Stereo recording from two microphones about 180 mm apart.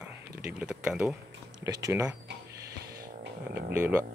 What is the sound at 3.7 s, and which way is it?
Speech, 10° right (ahead or behind).